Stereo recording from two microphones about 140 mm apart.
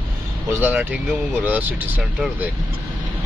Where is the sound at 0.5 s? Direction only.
15° right (ahead or behind).